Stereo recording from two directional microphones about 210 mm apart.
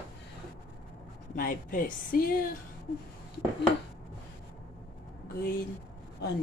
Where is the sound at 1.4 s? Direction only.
40° left (ahead or behind).